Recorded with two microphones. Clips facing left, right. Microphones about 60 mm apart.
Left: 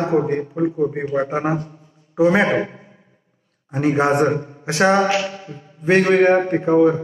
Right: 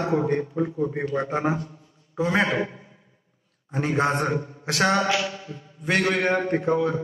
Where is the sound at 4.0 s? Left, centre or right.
Centre.